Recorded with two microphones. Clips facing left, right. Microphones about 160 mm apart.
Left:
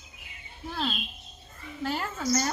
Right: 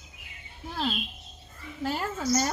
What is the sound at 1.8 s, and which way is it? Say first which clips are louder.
Speech: right 1 dB; 10° right (ahead or behind).